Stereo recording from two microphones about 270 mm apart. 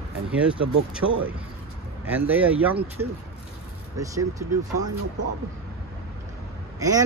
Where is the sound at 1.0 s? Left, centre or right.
Right.